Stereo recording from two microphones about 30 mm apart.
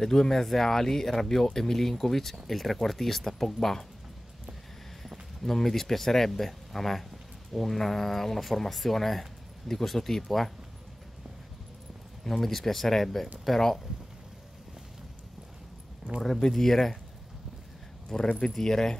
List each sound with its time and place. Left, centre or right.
0.0 s speech: centre
5.4 s speech: centre
12.3 s speech: centre
16.5 s speech: centre
18.1 s speech: centre